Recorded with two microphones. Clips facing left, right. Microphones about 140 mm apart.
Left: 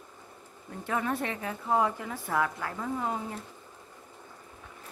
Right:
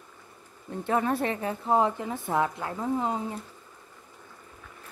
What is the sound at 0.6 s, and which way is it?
A woman's voice, 30° right (ahead or behind).